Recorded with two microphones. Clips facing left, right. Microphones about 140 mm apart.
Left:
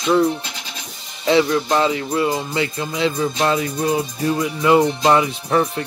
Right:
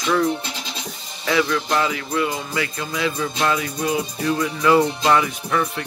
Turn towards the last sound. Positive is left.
turn(degrees=30)  # may be behind; listen again after turning